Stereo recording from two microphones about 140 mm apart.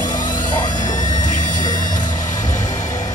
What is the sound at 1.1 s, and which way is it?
Music, 65° left (ahead or behind).